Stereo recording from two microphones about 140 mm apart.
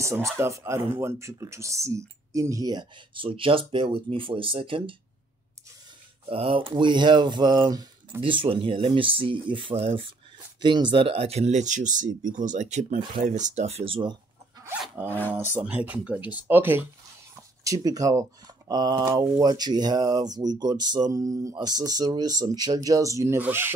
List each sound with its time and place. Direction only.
0.0 s speech: 20° right (ahead or behind); by 4.9 s 40° right (ahead or behind)
6.2 s speech: 40° right (ahead or behind)
8.2 s speech: 40° right (ahead or behind)
10.6 s speech: 35° right (ahead or behind)
15.0 s speech: 15° left (ahead or behind)
15.5 s speech: 10° right (ahead or behind)